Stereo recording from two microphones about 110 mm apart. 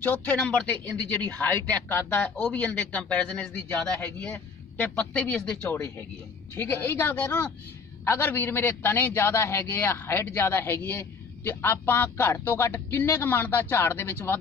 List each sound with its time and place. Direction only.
0.0 s a man's voice: 15° left (ahead or behind)
5.7 s a man's voice: 20° left (ahead or behind)